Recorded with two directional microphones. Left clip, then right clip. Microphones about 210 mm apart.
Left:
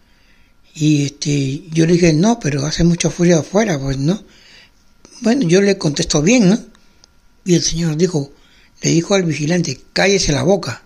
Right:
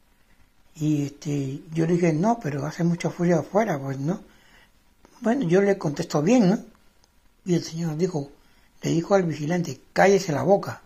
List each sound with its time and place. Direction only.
0.7 s speech: 30° left (ahead or behind)